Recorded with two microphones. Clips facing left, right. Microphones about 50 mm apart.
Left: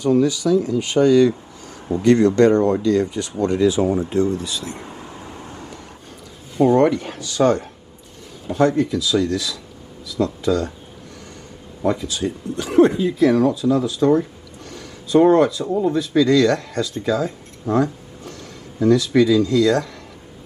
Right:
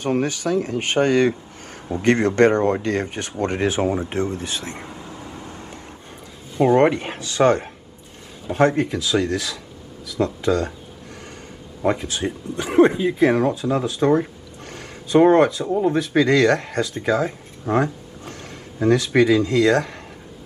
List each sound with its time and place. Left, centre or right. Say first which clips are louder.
0.0 s speech: left 5 dB; right
4.9 s vehicle: even; left
5.5 s vehicle: left 1 dB; right
6.6 s speech: left 1 dB; right
11.8 s speech: left 1 dB; right